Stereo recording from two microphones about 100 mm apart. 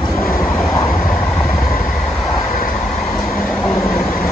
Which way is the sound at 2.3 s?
35° left (ahead or behind).